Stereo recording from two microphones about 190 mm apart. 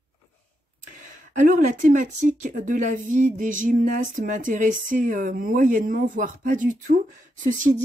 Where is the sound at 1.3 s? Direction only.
45° right (ahead or behind).